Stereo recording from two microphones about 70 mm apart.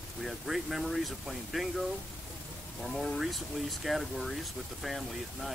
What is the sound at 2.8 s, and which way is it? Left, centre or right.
Speech, centre.